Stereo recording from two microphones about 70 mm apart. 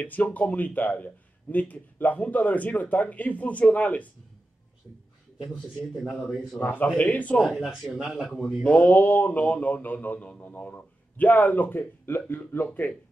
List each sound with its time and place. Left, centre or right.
0.0 s speech: left
5.4 s speech: centre
5.8 s a man's voice: centre
6.6 s speech: left
7.4 s a man's voice: centre
8.6 s speech: left